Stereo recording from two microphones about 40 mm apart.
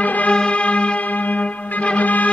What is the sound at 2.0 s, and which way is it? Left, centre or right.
Music, left.